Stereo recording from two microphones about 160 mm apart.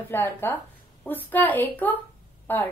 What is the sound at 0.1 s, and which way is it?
A woman's voice, 15° left (ahead or behind).